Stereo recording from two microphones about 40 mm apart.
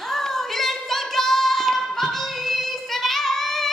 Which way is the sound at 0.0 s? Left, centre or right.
Centre.